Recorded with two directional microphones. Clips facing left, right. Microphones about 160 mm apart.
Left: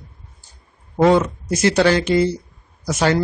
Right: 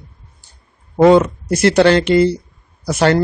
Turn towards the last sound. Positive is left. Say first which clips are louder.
# right 4 dB
turn(degrees=-60)  # may be behind; listen again after turning